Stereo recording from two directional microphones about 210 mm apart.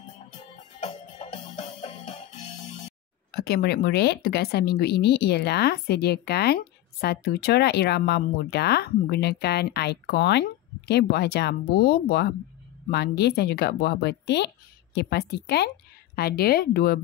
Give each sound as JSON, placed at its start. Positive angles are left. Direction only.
{"t": 0.8, "sound": "music", "side_deg": 30}
{"t": 3.3, "sound": "speech", "side_deg": 50}